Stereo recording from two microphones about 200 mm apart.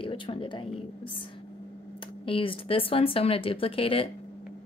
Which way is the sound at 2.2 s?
25° left (ahead or behind).